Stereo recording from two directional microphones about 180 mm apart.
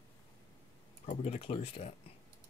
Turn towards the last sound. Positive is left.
turn(degrees=35)  # may be behind; listen again after turning